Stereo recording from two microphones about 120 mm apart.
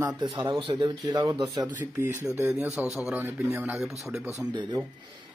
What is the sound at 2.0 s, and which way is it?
Speech, 20° right (ahead or behind).